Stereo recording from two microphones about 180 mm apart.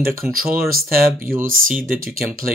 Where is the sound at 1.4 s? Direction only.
50° right (ahead or behind).